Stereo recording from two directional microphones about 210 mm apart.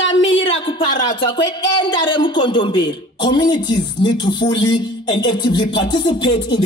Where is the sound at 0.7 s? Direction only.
20° left (ahead or behind).